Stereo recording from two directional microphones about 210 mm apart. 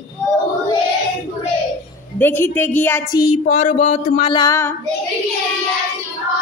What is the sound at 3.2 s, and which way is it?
Speech, 30° left (ahead or behind).